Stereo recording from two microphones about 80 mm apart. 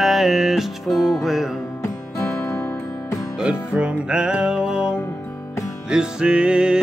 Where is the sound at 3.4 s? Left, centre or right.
Centre.